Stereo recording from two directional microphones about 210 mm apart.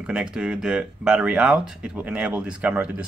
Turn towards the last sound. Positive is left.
turn(degrees=-5)  # may be behind; listen again after turning